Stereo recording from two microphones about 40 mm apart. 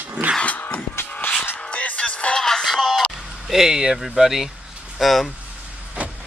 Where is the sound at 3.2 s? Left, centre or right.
Centre.